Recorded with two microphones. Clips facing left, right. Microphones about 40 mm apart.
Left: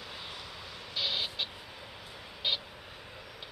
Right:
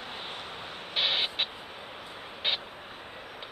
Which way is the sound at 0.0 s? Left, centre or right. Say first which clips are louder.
Right 4 dB; right.